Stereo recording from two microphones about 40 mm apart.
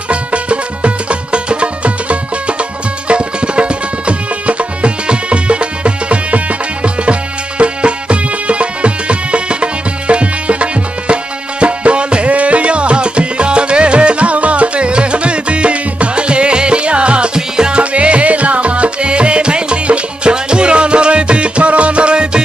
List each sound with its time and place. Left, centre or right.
0.1 s music: right